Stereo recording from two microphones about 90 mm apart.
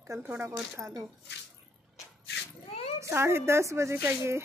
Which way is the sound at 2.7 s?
90° left.